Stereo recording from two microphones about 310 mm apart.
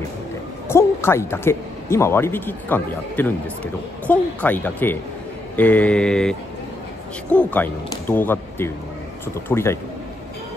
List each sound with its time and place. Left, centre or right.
0.7 s speech: centre
5.6 s mantra: centre
7.3 s speech: centre